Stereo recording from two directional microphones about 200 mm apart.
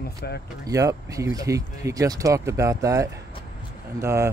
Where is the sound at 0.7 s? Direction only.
15° right (ahead or behind).